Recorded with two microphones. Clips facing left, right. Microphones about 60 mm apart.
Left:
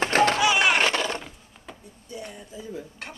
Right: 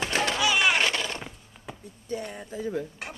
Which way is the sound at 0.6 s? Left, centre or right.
Left.